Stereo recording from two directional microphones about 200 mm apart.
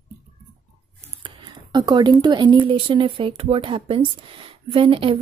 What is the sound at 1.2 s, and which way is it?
A woman's voice, 20° right (ahead or behind).